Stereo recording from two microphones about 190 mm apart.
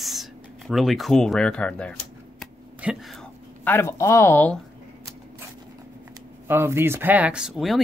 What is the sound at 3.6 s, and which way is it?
Speech, 10° left (ahead or behind).